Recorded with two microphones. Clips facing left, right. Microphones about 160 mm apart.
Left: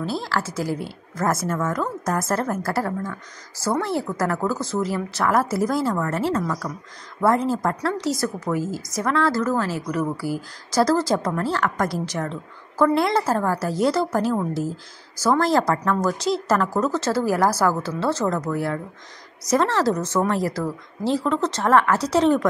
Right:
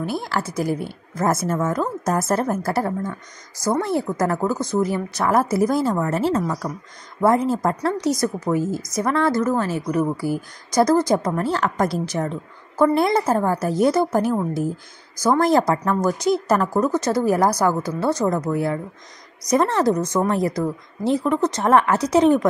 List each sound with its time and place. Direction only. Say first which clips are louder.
0.0 s a woman's voice: right 1 dB; 15° right (ahead or behind)